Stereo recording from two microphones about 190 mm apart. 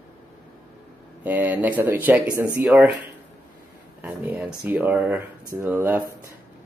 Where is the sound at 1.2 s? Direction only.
10° right (ahead or behind).